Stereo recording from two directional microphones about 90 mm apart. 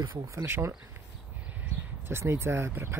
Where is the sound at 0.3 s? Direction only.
30° right (ahead or behind).